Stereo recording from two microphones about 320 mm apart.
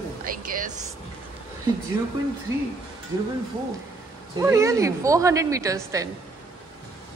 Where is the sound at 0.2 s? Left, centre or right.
Right.